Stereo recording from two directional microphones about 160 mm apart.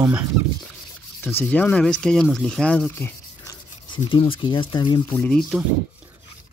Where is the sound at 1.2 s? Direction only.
10° left (ahead or behind).